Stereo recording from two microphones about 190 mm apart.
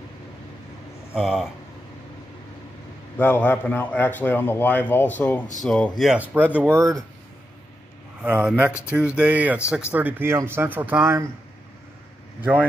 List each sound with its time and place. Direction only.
1.1 s speech: 5° right (ahead or behind)
3.2 s a man's voice: 10° left (ahead or behind); by 7.0 s 15° right (ahead or behind)
8.2 s speech: 10° right (ahead or behind)